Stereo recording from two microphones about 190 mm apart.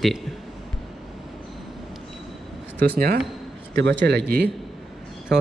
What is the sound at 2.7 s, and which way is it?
Speech, 55° right (ahead or behind).